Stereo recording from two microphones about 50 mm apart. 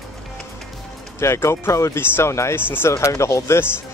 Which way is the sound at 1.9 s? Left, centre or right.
Left.